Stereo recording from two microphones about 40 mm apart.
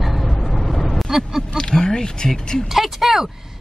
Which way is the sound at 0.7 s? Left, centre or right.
Centre.